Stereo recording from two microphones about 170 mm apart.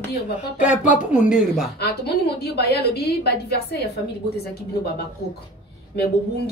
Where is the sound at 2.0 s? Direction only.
75° left (ahead or behind).